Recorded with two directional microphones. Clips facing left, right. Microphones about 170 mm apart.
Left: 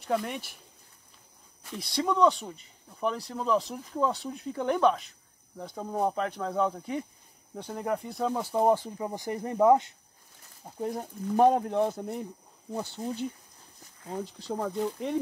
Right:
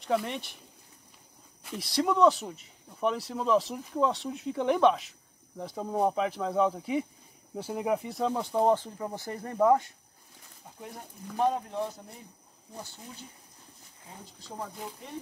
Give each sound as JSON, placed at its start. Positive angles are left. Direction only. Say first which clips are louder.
{"t": 0.0, "sound": "speech", "louder": "right 1 dB", "side_deg": 0}
{"t": 1.7, "sound": "speech", "louder": "right 1 dB", "side_deg": 0}
{"t": 10.8, "sound": "speech", "louder": "left 11 dB", "side_deg": 45}
{"t": 12.7, "sound": "speech", "louder": "left 11 dB", "side_deg": 70}